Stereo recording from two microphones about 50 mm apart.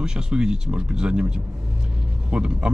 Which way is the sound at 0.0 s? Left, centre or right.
Centre.